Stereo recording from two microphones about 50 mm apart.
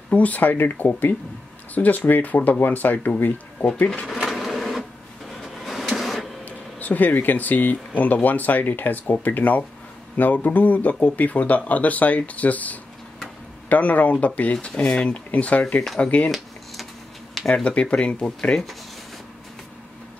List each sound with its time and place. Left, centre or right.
0.1 s speech: left
4.2 s printer: centre
6.4 s speech: left
16.3 s a sound: centre
17.6 s speech: left